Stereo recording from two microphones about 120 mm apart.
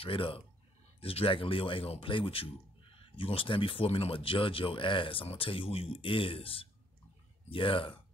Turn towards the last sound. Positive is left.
turn(degrees=45)  # may be behind; listen again after turning